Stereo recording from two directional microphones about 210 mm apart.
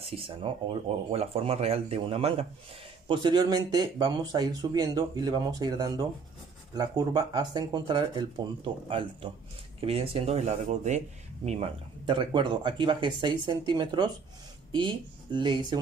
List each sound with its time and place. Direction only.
0.0 s speech: 25° right (ahead or behind)